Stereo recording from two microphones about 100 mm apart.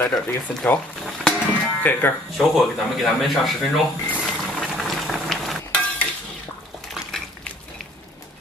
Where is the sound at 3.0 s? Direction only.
Centre (ahead or behind).